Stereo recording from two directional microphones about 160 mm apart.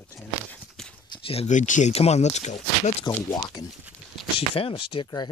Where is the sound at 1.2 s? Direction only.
40° left (ahead or behind).